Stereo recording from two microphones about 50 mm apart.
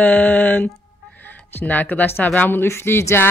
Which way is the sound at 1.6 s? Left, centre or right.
Left.